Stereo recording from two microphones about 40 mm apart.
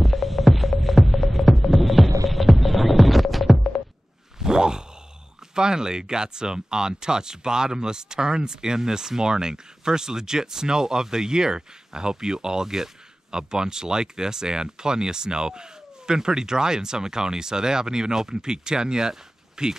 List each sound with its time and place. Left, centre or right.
0.0 s music: centre
4.4 s a sound: centre
5.5 s speech: centre